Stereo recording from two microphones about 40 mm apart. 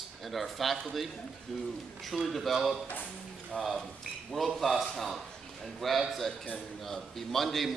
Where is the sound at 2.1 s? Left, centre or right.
Centre.